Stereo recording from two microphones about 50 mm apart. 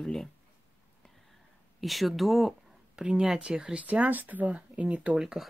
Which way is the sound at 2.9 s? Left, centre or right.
Centre.